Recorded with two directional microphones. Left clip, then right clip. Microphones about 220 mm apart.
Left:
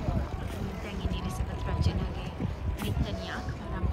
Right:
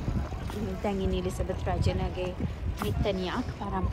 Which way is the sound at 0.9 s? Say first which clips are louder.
Right 11 dB; 20° right (ahead or behind).